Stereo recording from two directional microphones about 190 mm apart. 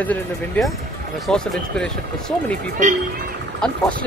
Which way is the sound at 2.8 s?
40° right (ahead or behind).